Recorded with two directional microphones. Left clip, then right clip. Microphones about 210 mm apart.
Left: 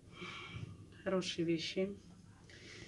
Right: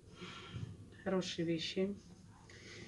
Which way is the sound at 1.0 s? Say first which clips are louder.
Left 1 dB; 25° left (ahead or behind).